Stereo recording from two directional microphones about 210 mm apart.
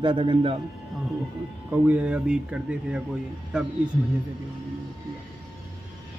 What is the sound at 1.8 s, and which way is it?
A man's voice, 5° right (ahead or behind).